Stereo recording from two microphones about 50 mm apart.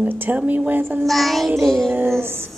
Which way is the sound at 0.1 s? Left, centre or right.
Right.